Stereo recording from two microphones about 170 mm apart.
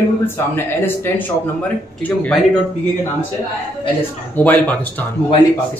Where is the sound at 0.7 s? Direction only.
10° left (ahead or behind).